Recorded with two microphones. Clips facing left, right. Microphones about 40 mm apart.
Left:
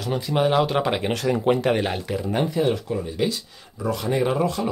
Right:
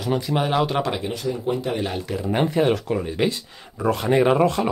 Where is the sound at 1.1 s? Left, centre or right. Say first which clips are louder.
Left 4 dB; left.